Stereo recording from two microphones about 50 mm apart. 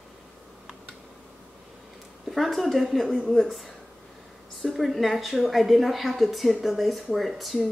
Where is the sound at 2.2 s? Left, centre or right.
Centre.